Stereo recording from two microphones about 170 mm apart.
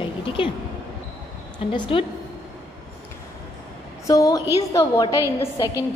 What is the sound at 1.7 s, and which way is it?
Speech, 30° left (ahead or behind).